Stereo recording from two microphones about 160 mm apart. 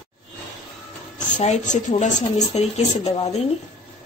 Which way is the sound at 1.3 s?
45° left (ahead or behind).